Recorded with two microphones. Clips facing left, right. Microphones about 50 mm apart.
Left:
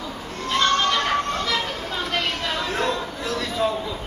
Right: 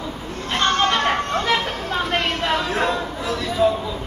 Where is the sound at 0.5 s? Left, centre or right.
Right.